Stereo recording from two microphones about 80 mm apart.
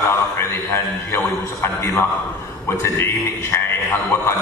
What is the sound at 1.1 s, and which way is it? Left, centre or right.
A man's voice, left.